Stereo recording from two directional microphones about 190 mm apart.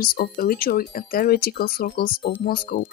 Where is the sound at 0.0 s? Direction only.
50° left (ahead or behind).